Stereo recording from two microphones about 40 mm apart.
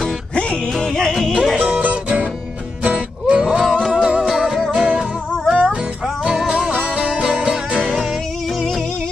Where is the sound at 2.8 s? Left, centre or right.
Right.